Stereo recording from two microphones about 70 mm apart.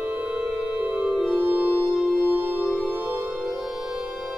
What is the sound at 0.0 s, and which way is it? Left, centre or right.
Music, right.